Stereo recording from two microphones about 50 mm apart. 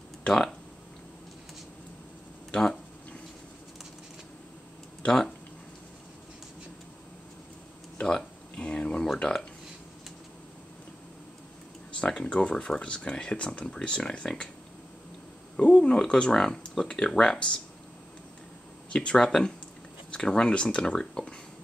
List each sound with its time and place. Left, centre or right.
0.2 s a sound: centre
2.5 s speech: centre
5.0 s speech: centre
8.0 s a sound: centre
12.2 s speech: left
15.7 s speech: centre
18.9 s speech: centre